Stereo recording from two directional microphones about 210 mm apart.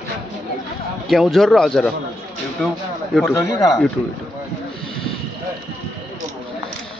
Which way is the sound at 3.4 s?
15° left (ahead or behind).